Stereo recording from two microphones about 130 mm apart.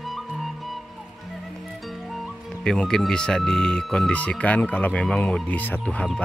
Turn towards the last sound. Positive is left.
turn(degrees=10)  # may be behind; listen again after turning